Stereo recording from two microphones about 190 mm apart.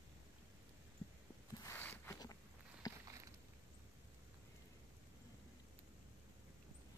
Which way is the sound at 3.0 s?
15° right (ahead or behind).